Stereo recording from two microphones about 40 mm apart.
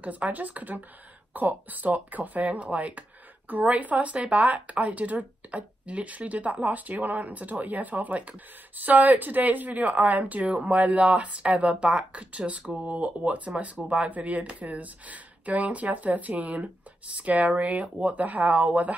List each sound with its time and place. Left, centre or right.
0.0 s speech: right